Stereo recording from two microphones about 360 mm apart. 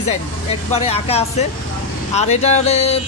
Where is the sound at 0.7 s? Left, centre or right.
Centre.